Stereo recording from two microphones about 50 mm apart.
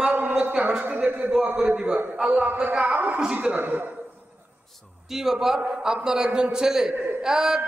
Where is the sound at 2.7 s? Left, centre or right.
Right.